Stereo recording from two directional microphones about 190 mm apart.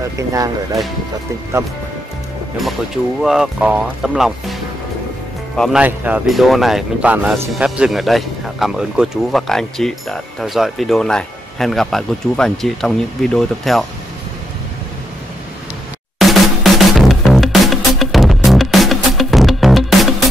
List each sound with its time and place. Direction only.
0.2 s speech: 15° right (ahead or behind)
3.2 s speech: centre (ahead or behind)
5.6 s speech: 5° right (ahead or behind)
16.2 s music: centre (ahead or behind)